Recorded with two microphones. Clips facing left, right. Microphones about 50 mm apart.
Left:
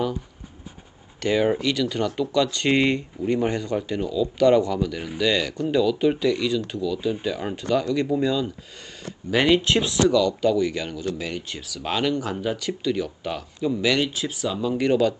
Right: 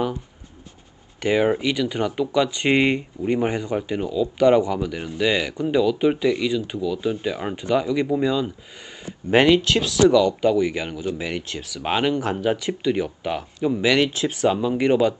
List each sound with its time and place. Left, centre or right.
1.2 s speech: centre
9.6 s speech: left
10.0 s speech: right
14.3 s speech: right
14.6 s speech: right